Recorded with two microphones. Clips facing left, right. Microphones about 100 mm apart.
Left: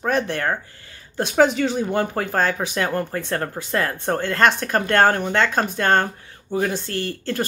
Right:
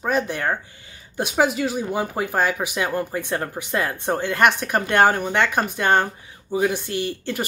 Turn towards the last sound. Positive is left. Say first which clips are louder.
# even
turn(degrees=-15)  # may be behind; listen again after turning